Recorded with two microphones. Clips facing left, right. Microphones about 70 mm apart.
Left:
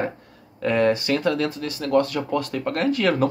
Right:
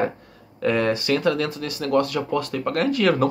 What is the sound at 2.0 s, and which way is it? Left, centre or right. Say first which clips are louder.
Speech: left 1 dB; left.